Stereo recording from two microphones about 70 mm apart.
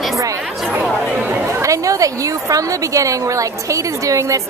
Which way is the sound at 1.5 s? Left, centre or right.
Right.